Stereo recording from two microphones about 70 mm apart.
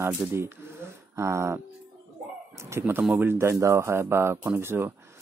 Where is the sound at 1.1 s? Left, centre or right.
Right.